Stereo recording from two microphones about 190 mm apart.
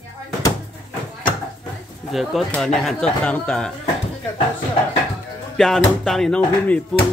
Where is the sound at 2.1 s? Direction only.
Centre (ahead or behind).